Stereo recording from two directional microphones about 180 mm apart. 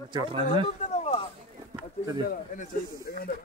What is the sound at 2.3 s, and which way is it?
Speech, 55° left (ahead or behind).